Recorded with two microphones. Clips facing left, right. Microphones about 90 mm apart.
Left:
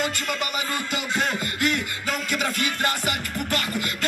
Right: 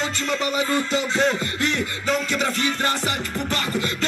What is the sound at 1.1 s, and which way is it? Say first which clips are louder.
Music: right 2 dB; 30° right (ahead or behind).